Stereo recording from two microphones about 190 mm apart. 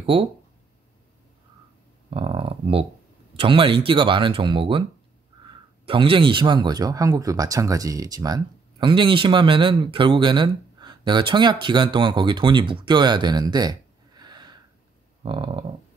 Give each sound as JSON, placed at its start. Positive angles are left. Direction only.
{"t": 0.0, "sound": "speech", "side_deg": -30}
{"t": 2.0, "sound": "a sound", "side_deg": -25}
{"t": 3.3, "sound": "speech", "side_deg": -25}
{"t": 5.9, "sound": "speech", "side_deg": -30}